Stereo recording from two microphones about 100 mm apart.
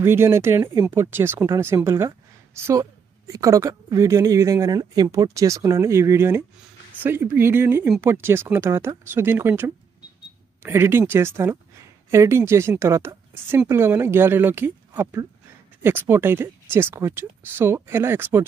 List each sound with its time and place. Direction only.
0.0 s speech: 25° right (ahead or behind)